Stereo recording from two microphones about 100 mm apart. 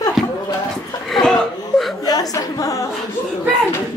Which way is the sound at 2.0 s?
40° left (ahead or behind).